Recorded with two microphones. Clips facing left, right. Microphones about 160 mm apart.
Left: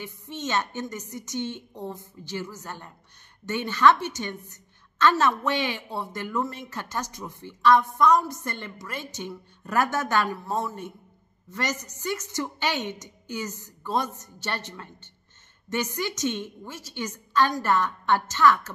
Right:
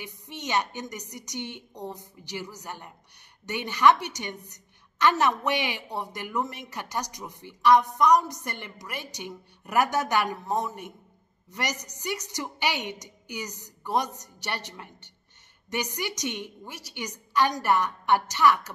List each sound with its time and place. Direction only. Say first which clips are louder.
0.0 s speech: left 4 dB; 15° right (ahead or behind)